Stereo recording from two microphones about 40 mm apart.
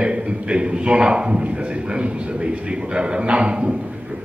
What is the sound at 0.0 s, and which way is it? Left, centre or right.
A man's voice, right.